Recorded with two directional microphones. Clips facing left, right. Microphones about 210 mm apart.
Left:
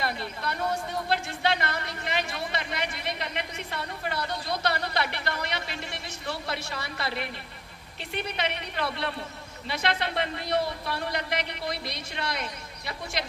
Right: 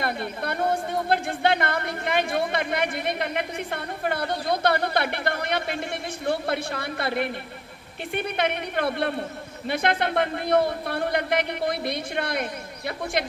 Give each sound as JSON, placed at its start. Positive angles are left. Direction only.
{"t": 0.0, "sound": "speech", "side_deg": -55}